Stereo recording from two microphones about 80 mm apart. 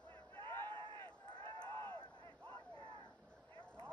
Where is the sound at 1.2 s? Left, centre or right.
Left.